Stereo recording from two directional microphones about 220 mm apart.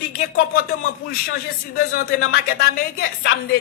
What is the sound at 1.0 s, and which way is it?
Speech, 45° left (ahead or behind).